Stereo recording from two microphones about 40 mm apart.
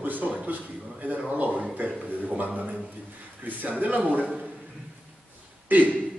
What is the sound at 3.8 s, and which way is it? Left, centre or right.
Speech, right.